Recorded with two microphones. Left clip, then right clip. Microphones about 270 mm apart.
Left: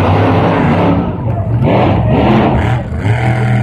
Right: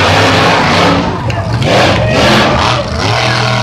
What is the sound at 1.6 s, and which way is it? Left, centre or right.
Crowd, right.